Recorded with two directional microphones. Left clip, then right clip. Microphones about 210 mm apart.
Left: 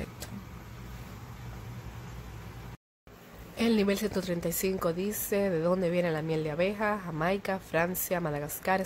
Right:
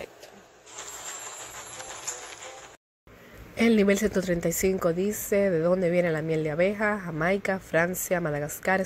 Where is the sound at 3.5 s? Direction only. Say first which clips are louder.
Right 6 dB; 15° right (ahead or behind).